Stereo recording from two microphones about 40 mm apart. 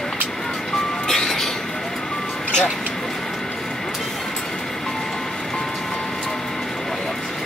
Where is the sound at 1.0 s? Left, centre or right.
Centre.